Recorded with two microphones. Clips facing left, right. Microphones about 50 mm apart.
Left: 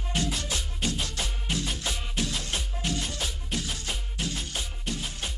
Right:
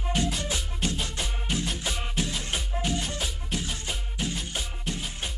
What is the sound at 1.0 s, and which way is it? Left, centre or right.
Music, centre.